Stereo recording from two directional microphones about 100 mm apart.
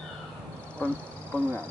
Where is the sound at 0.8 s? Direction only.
15° left (ahead or behind).